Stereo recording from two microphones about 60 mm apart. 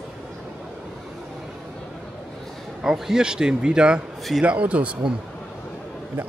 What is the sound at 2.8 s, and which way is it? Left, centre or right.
A man's voice, centre.